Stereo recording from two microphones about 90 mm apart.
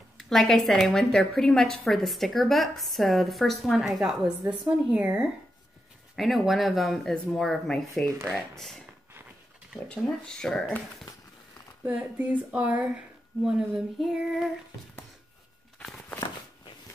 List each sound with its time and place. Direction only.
0.2 s speech: 5° left (ahead or behind)
4.5 s speech: 15° right (ahead or behind)
6.1 s speech: centre (ahead or behind)
9.8 s speech: 5° left (ahead or behind)
11.8 s speech: 15° right (ahead or behind)
13.4 s speech: 5° right (ahead or behind)